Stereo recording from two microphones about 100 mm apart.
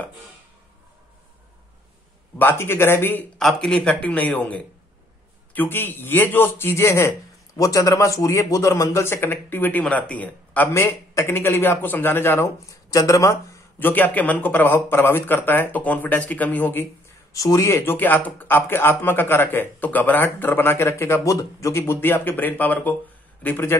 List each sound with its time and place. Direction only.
2.3 s a man's voice: 20° left (ahead or behind)
3.3 s a man's voice: 5° left (ahead or behind)
10.7 s a man's voice: 30° left (ahead or behind)
13.7 s a man's voice: 20° left (ahead or behind)
17.3 s speech: 35° left (ahead or behind)
17.8 s a man's voice: 20° left (ahead or behind)